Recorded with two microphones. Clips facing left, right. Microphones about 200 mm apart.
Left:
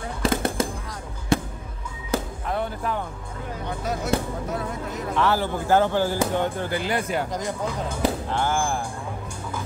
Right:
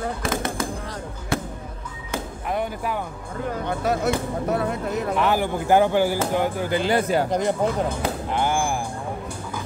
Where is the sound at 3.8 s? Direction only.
65° right (ahead or behind).